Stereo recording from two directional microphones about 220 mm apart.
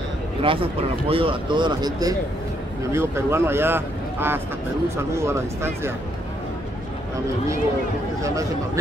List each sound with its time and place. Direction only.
0.4 s speech: 25° right (ahead or behind)